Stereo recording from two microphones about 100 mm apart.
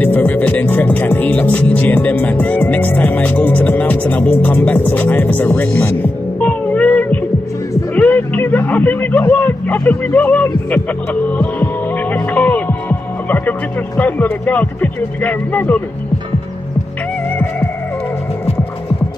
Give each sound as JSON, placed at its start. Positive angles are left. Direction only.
{"t": 0.0, "sound": "music", "side_deg": 20}
{"t": 7.9, "sound": "a sound", "side_deg": 15}
{"t": 11.3, "sound": "music", "side_deg": 15}
{"t": 13.3, "sound": "speech", "side_deg": 15}